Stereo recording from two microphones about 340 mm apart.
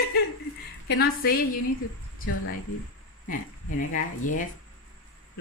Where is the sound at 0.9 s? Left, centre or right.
Left.